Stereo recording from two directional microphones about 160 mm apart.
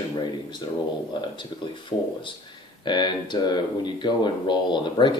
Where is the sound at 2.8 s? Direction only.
30° left (ahead or behind).